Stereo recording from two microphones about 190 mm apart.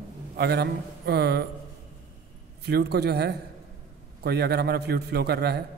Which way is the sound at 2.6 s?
60° right (ahead or behind).